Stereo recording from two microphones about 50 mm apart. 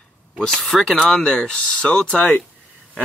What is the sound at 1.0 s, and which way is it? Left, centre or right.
Speech, centre.